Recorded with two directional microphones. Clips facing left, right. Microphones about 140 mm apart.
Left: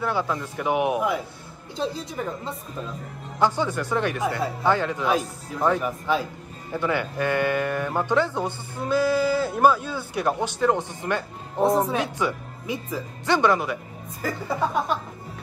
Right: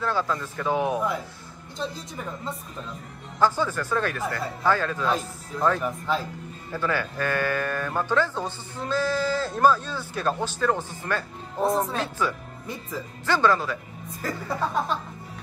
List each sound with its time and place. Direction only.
0.0 s speech: 15° left (ahead or behind)
3.3 s speech: 15° left (ahead or behind)
5.8 s speech: 5° left (ahead or behind)
6.7 s speech: 20° left (ahead or behind)
12.6 s speech: centre (ahead or behind)
13.2 s speech: 15° left (ahead or behind)
14.2 s speech: centre (ahead or behind)